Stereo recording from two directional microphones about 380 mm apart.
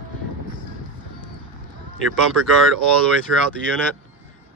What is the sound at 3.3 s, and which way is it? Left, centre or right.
Speech, right.